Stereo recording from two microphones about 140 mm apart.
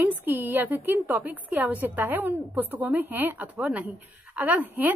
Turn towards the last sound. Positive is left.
turn(degrees=-15)  # may be behind; listen again after turning